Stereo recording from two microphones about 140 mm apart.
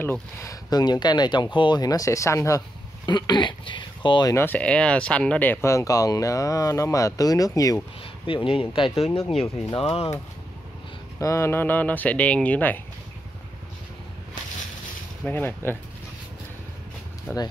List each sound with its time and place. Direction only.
0.0 s speech: 20° left (ahead or behind)
3.1 s speech: 30° left (ahead or behind)
4.4 s speech: 10° left (ahead or behind)
8.5 s speech: 40° left (ahead or behind)
11.1 s speech: 20° left (ahead or behind)
15.2 s speech: 15° left (ahead or behind)
17.3 s speech: 15° left (ahead or behind)